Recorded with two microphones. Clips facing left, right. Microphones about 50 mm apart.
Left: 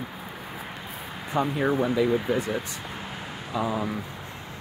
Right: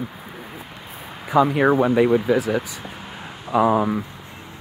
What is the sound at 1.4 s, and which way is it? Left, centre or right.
Speech, right.